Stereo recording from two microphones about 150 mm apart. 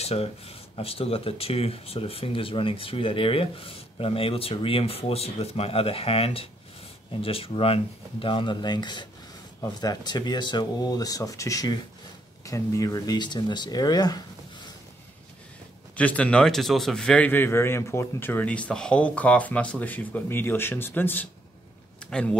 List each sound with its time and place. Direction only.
0.0 s speech: 40° left (ahead or behind)
16.0 s a man's voice: 10° left (ahead or behind)